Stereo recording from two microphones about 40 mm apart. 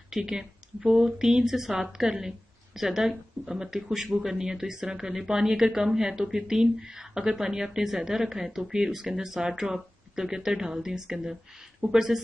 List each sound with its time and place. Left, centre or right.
0.1 s a woman's voice: centre